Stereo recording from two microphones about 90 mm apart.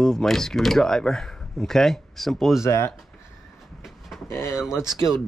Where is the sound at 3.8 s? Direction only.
Centre (ahead or behind).